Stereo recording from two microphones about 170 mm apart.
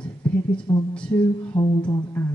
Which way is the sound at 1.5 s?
25° left (ahead or behind).